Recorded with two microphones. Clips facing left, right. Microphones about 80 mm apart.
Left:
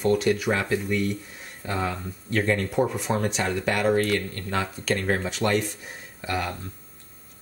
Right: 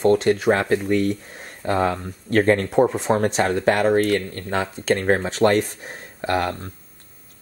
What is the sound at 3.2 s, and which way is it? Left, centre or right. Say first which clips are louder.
Speech: right 6 dB; right.